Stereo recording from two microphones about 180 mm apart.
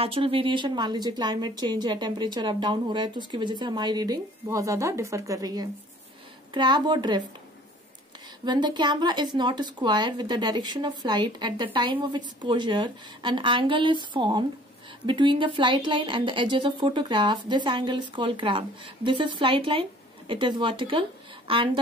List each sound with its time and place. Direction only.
0.0 s a woman's voice: 30° right (ahead or behind)
8.5 s a woman's voice: 25° right (ahead or behind)